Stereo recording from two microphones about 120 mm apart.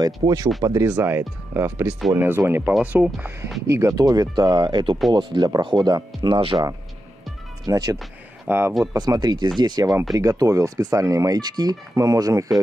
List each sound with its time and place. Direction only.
0.2 s speech: 35° right (ahead or behind)
0.8 s speech: 15° right (ahead or behind); by 6.6 s 45° right (ahead or behind)
7.6 s speech: 30° right (ahead or behind)
8.9 s speech: 35° right (ahead or behind)